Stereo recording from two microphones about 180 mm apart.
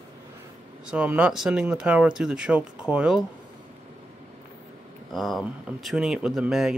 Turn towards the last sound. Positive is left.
turn(degrees=0)  # may be behind; listen again after turning